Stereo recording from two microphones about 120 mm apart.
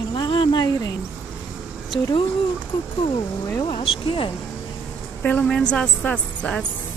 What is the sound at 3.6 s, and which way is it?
Speech, 40° left (ahead or behind).